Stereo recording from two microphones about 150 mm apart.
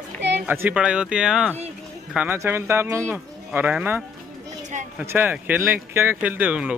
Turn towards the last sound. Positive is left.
turn(degrees=-10)  # may be behind; listen again after turning